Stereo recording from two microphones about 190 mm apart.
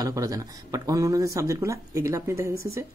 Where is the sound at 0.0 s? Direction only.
20° right (ahead or behind).